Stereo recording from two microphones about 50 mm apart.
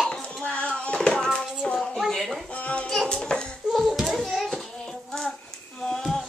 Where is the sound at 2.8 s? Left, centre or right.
Centre.